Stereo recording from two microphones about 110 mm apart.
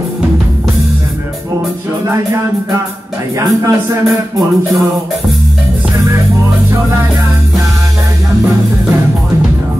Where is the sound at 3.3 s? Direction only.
30° right (ahead or behind).